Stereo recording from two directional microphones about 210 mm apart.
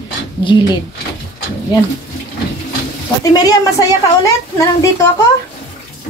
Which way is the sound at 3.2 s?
15° left (ahead or behind).